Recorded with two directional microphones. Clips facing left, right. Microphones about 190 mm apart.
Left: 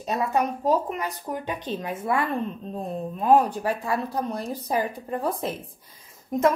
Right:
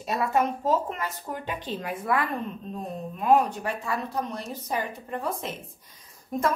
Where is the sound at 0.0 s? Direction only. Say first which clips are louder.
Left 1 dB; 15° left (ahead or behind); by 5.5 s 35° left (ahead or behind).